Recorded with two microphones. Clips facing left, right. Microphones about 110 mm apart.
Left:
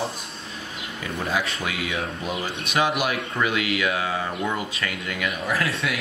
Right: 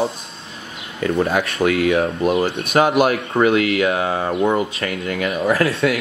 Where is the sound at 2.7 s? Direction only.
45° right (ahead or behind).